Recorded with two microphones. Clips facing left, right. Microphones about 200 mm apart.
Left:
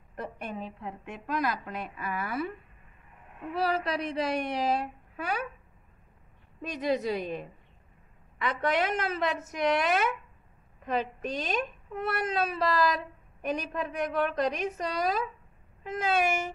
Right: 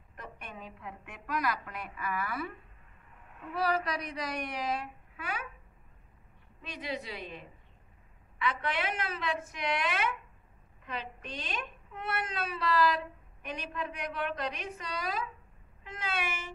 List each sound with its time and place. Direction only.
0.1 s a woman's voice: 35° left (ahead or behind)
3.5 s a woman's voice: 25° left (ahead or behind)
6.6 s a child's voice: 45° left (ahead or behind)